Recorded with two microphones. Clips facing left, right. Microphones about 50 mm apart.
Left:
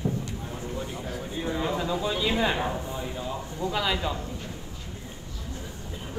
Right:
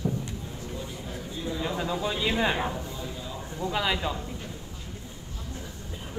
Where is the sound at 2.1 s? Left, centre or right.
Right.